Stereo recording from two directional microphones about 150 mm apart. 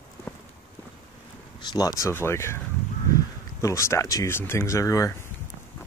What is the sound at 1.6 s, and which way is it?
Speech, 25° left (ahead or behind).